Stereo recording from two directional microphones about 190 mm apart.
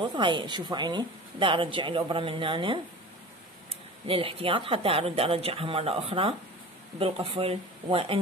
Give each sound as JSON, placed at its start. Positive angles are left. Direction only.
{"t": 0.0, "sound": "speech", "side_deg": -25}
{"t": 4.1, "sound": "speech", "side_deg": -30}